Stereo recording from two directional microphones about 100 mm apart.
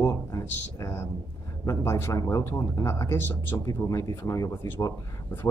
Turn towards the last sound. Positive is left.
turn(degrees=30)  # may be behind; listen again after turning